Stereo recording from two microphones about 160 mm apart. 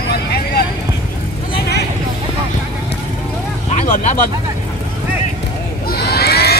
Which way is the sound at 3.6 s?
50° left (ahead or behind).